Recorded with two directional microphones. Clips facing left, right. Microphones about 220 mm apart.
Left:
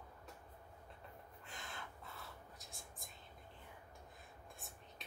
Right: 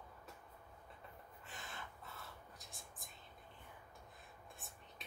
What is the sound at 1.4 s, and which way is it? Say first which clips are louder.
Whispering: even; centre (ahead or behind).